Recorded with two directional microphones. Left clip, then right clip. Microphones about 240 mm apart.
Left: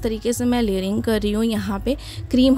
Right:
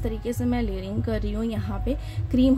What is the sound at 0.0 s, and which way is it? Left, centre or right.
Speech, left.